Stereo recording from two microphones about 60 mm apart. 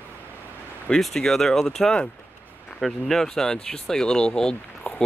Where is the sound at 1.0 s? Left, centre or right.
Centre.